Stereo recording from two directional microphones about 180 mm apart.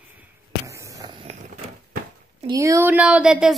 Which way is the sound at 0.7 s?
15° right (ahead or behind).